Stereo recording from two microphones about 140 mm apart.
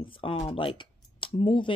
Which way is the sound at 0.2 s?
40° left (ahead or behind).